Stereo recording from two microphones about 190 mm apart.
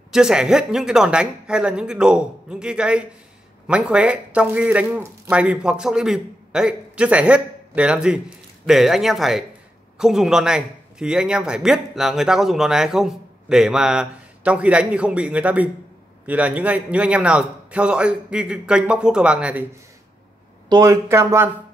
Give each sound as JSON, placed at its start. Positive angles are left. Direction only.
{"t": 0.1, "sound": "speech", "side_deg": -5}
{"t": 20.6, "sound": "speech", "side_deg": -20}